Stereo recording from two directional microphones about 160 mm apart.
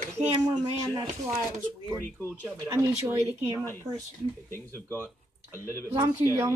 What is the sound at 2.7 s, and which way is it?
Speech, 20° right (ahead or behind).